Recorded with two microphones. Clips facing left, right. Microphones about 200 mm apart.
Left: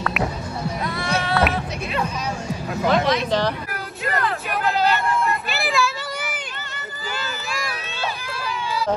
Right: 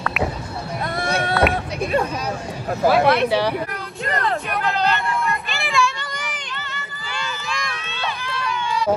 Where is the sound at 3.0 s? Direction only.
60° right (ahead or behind).